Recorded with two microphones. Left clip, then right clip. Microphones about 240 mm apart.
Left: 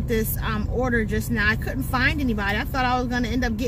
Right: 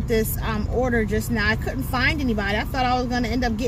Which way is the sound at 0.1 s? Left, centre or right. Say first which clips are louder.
Right 2 dB; centre.